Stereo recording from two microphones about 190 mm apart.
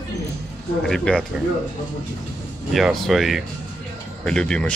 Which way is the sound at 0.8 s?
5° left (ahead or behind).